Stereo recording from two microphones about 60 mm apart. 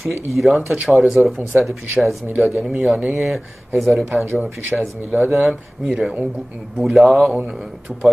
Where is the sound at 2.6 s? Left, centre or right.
Centre.